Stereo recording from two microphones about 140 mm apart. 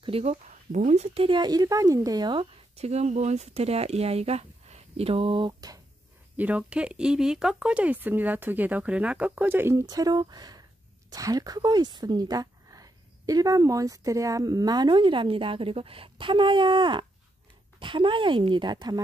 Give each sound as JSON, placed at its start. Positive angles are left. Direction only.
{"t": 0.0, "sound": "speech", "side_deg": -45}
{"t": 2.7, "sound": "speech", "side_deg": -50}
{"t": 6.3, "sound": "speech", "side_deg": -10}